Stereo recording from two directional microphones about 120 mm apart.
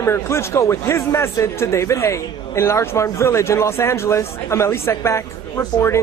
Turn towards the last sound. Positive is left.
turn(degrees=25)  # may be behind; listen again after turning